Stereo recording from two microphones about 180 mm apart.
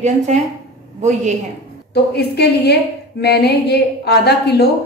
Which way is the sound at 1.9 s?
65° left (ahead or behind).